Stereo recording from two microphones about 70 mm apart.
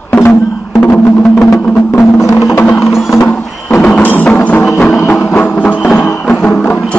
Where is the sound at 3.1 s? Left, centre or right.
Left.